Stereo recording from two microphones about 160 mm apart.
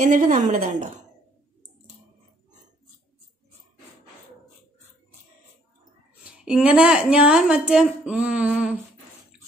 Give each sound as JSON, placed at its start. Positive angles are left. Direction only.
{"t": 0.0, "sound": "speech", "side_deg": -55}
{"t": 6.2, "sound": "a woman's voice", "side_deg": -5}